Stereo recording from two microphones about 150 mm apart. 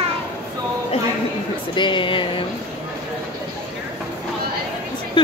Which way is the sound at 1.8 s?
35° left (ahead or behind).